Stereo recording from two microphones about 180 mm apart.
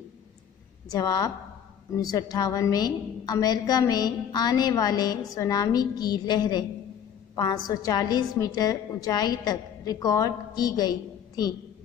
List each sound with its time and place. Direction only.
0.9 s a woman's voice: 20° left (ahead or behind)